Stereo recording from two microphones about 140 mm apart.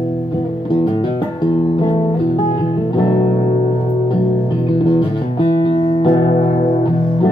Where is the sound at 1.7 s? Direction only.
30° left (ahead or behind).